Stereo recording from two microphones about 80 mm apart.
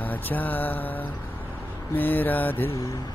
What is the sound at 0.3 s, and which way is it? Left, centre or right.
Speech, left.